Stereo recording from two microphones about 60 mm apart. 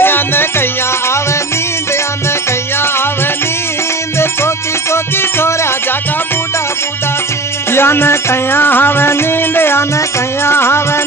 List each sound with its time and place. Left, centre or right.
0.0 s music: left
4.9 s music: left
7.7 s music: left